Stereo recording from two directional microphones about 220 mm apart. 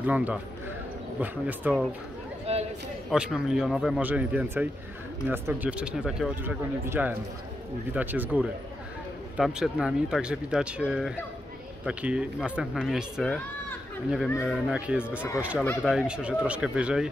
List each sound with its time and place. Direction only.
0.0 s speech: 5° right (ahead or behind)
2.5 s a man's voice: 30° right (ahead or behind)
3.1 s speech: centre (ahead or behind)